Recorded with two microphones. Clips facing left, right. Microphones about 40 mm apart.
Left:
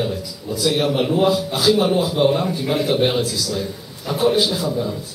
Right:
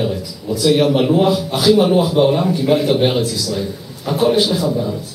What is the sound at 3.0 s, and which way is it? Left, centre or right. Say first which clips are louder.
A man's voice: right 3 dB; right.